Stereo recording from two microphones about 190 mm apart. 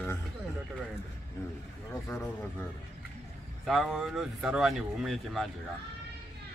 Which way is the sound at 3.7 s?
Centre (ahead or behind).